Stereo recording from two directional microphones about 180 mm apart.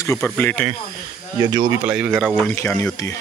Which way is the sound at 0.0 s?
15° left (ahead or behind).